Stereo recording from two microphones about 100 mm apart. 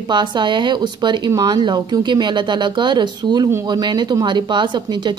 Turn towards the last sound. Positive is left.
turn(degrees=-50)  # may be behind; listen again after turning